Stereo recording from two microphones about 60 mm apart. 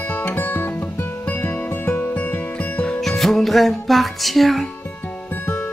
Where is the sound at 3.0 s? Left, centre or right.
Centre.